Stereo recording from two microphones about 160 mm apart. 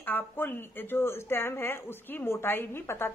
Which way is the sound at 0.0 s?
10° left (ahead or behind).